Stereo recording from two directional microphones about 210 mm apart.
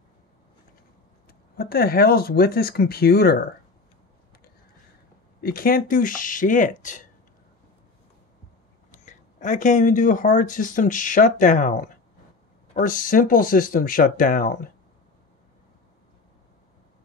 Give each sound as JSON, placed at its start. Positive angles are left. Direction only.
{"t": 1.6, "sound": "speech", "side_deg": 45}
{"t": 5.4, "sound": "speech", "side_deg": 45}
{"t": 8.9, "sound": "speech", "side_deg": 35}
{"t": 12.8, "sound": "speech", "side_deg": 40}